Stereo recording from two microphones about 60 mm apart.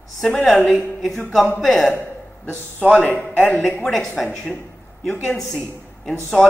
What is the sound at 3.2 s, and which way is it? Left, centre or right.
Speech, left.